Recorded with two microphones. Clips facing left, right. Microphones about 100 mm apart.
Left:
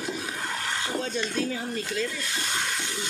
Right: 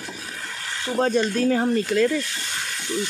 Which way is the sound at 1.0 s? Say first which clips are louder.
Right 13 dB; 55° right (ahead or behind).